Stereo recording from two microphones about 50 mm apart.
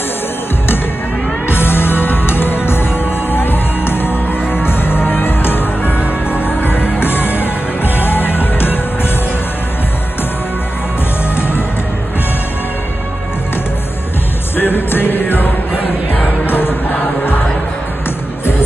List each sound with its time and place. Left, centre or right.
1.5 s music: left
11.3 s music: left
14.6 s music: left